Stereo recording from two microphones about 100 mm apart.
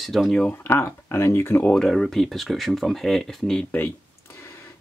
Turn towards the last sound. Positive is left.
turn(degrees=5)  # may be behind; listen again after turning